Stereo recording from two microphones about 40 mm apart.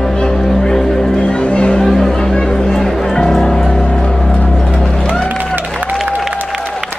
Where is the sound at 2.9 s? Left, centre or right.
Centre.